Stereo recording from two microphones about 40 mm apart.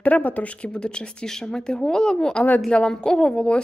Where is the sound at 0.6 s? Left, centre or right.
Left.